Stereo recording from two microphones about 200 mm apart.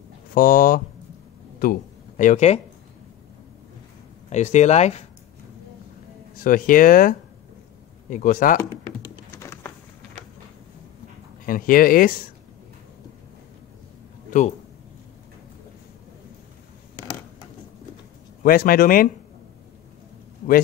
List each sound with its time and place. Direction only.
0.3 s speech: 45° left (ahead or behind)
4.3 s speech: 35° left (ahead or behind)
6.3 s speech: 45° left (ahead or behind)
8.5 s typing: 20° left (ahead or behind)
11.4 s speech: 45° left (ahead or behind)
18.4 s speech: 45° left (ahead or behind)